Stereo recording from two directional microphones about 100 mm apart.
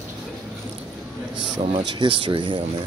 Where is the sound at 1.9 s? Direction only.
55° right (ahead or behind).